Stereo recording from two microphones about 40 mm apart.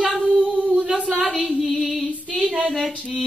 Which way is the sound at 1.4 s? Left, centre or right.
Centre.